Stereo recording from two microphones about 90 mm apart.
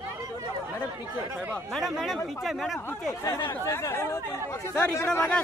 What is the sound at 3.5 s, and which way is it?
Speech, 30° left (ahead or behind).